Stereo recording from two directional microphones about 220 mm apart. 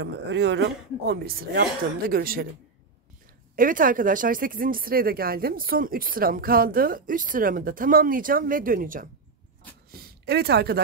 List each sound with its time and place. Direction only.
0.0 s a man's voice: 55° right (ahead or behind)
3.5 s speech: 40° right (ahead or behind)